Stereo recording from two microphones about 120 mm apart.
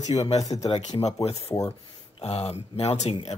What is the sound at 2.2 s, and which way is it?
Speech, 60° left (ahead or behind).